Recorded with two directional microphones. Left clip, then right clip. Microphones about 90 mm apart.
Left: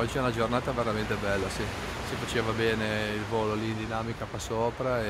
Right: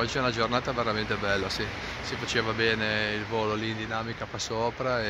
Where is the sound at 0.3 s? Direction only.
20° right (ahead or behind).